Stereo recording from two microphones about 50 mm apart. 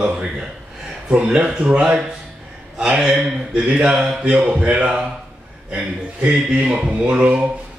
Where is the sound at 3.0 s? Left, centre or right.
Right.